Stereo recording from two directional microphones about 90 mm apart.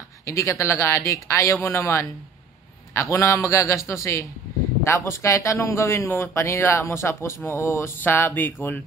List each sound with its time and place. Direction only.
0.3 s speech: 30° left (ahead or behind)